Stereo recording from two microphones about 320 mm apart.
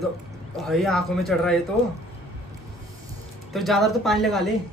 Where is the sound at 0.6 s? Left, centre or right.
Centre.